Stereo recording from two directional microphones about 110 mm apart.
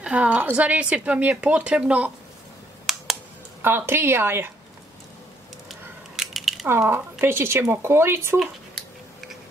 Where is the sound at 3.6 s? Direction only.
20° right (ahead or behind).